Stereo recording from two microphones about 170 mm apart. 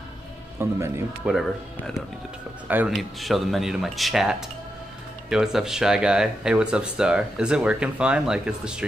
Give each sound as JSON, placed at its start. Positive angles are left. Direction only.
{"t": 0.6, "sound": "speech", "side_deg": -15}
{"t": 2.9, "sound": "speech", "side_deg": 0}